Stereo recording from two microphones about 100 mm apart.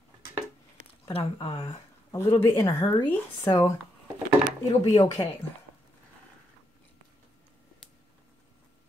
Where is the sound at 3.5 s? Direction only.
40° left (ahead or behind).